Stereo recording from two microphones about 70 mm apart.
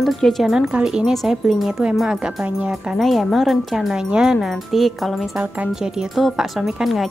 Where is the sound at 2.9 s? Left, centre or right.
Centre.